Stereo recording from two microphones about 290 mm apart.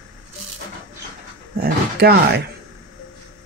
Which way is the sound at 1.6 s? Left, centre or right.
Right.